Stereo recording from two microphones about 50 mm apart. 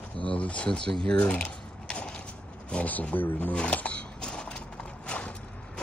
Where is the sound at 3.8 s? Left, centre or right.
Left.